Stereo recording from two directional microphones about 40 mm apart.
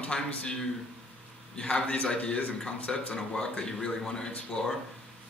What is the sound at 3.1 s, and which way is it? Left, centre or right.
Speech, centre.